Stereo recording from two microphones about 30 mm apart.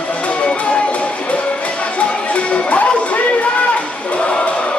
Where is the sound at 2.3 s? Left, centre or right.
Left.